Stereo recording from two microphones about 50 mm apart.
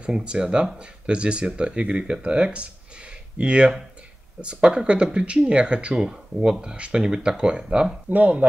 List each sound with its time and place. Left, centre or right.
0.0 s speech: right
8.1 s speech: right